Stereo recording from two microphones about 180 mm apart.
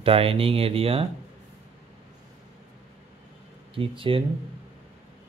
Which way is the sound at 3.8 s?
30° right (ahead or behind).